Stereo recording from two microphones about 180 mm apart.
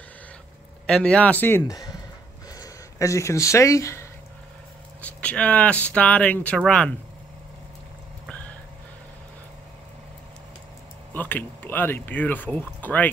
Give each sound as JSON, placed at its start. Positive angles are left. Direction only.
{"t": 0.8, "sound": "speech", "side_deg": 5}
{"t": 11.1, "sound": "speech", "side_deg": 10}